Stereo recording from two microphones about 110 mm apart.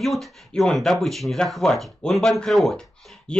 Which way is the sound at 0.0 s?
Centre (ahead or behind).